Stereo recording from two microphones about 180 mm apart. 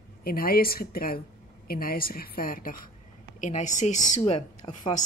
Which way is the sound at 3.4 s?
40° left (ahead or behind).